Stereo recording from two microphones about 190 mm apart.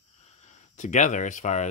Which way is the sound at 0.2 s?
35° left (ahead or behind).